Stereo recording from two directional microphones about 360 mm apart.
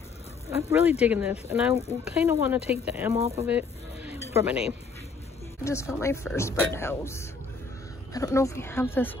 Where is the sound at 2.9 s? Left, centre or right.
Centre.